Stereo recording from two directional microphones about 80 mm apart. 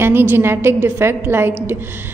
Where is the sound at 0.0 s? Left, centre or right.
Right.